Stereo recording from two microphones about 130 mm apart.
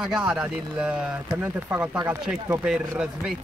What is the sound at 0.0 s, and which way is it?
Speech, 5° right (ahead or behind).